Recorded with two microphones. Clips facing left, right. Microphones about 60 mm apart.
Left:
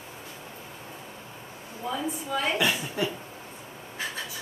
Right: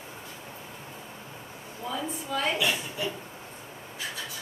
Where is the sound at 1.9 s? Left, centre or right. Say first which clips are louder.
Left 2 dB; centre.